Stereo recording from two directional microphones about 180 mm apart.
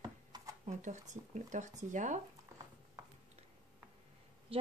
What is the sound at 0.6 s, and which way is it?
Speech, 40° right (ahead or behind).